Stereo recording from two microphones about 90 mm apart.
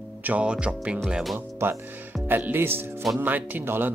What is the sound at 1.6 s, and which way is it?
Speech, 25° right (ahead or behind).